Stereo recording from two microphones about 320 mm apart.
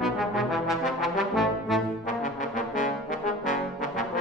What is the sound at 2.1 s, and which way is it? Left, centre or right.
Brass instrument, left.